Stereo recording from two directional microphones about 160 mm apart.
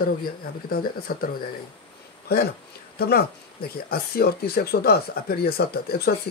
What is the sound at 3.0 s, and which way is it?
Speech, 75° left (ahead or behind).